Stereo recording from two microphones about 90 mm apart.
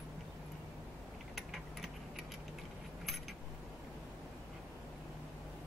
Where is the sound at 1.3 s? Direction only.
Centre (ahead or behind).